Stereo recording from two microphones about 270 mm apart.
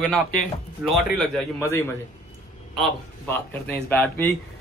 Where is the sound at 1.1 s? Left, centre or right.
Centre.